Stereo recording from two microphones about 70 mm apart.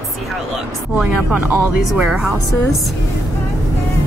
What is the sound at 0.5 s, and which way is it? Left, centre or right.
Speech, centre.